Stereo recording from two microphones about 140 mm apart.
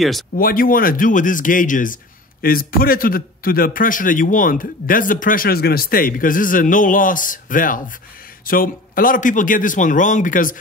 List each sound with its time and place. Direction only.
0.4 s a man's voice: 90° left; by 2.0 s 70° left (ahead or behind)
2.4 s a man's voice: 90° left; by 7.8 s 75° left (ahead or behind)
8.5 s a man's voice: 90° left; by 10.5 s 70° left (ahead or behind)